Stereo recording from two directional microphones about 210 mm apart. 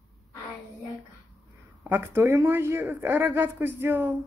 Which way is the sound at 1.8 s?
10° right (ahead or behind).